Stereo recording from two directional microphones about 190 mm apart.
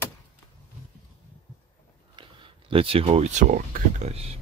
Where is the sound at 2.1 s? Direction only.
25° right (ahead or behind); by 4.1 s 45° right (ahead or behind).